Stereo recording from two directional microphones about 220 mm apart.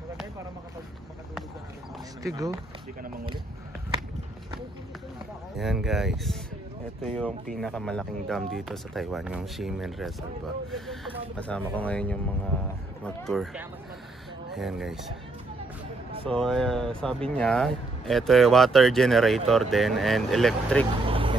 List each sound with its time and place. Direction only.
2.2 s speech: 15° right (ahead or behind)
5.6 s speech: centre (ahead or behind)
16.3 s speech: centre (ahead or behind)
21.0 s vehicle: 25° right (ahead or behind)